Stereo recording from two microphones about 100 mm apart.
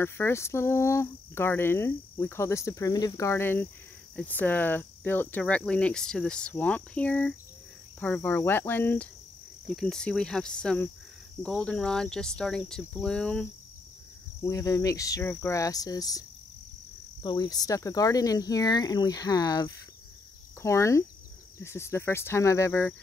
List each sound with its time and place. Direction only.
0.0 s speech: 25° left (ahead or behind)
5.4 s speech: 10° left (ahead or behind)
9.8 s speech: 5° left (ahead or behind)
14.4 s cricket: 35° left (ahead or behind)
20.6 s speech: 30° left (ahead or behind)